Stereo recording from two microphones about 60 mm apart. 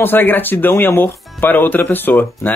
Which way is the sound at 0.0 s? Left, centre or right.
Left.